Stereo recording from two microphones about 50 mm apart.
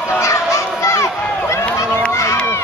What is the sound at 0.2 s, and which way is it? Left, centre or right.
Run, left.